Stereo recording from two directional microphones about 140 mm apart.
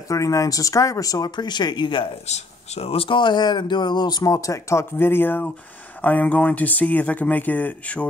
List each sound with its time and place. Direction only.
0.1 s speech: 25° left (ahead or behind)
2.2 s speech: 50° left (ahead or behind); by 8.1 s 10° left (ahead or behind)